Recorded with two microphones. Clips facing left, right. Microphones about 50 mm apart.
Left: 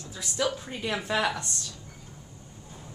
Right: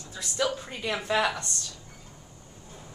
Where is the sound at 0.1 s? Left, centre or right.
Centre.